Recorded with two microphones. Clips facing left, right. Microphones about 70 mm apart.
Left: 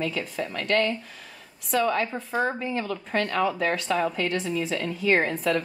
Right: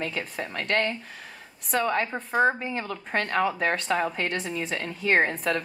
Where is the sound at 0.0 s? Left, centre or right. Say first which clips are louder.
Left 2 dB; right.